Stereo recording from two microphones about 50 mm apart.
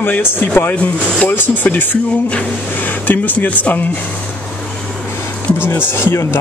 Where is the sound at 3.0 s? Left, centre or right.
Left.